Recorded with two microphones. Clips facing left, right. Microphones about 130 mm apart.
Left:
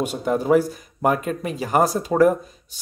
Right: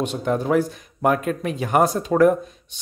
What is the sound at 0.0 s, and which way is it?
Speech, 5° left (ahead or behind).